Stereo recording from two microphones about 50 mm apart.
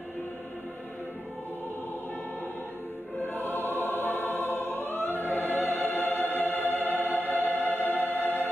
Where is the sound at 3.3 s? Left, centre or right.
Left.